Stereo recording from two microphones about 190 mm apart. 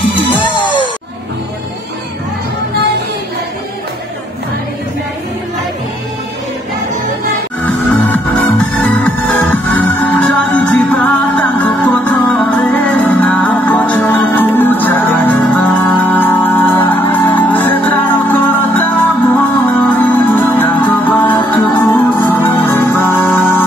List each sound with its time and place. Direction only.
0.1 s music: 25° left (ahead or behind)
7.6 s music: 10° left (ahead or behind)